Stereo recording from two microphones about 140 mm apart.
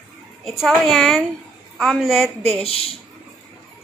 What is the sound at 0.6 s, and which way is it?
A woman's voice, centre (ahead or behind).